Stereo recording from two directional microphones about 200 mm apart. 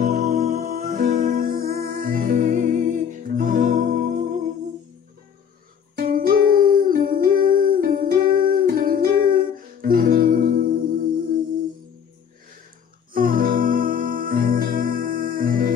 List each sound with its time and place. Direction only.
0.4 s music: 30° right (ahead or behind)
0.7 s music: 50° right (ahead or behind)
5.9 s music: 45° right (ahead or behind)
13.1 s music: 45° right (ahead or behind)